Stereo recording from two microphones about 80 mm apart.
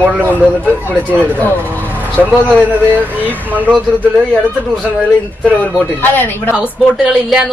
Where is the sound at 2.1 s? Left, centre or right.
Centre.